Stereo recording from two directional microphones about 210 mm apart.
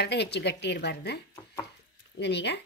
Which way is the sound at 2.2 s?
55° left (ahead or behind).